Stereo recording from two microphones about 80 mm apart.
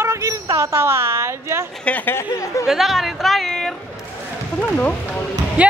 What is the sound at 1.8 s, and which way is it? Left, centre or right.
Speech, centre.